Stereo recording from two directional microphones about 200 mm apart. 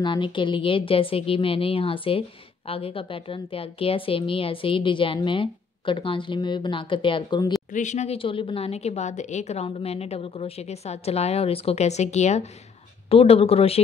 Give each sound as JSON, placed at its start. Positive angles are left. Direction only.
{"t": 0.0, "sound": "a woman's voice", "side_deg": 25}
{"t": 7.7, "sound": "a woman's voice", "side_deg": 35}